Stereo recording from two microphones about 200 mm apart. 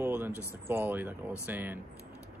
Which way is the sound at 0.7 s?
10° right (ahead or behind).